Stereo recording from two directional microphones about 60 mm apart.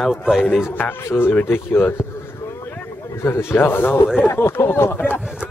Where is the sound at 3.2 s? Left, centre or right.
Left.